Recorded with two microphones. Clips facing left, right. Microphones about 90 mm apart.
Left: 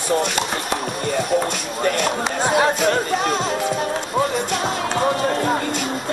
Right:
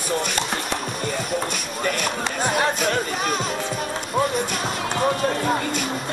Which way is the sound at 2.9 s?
35° left (ahead or behind).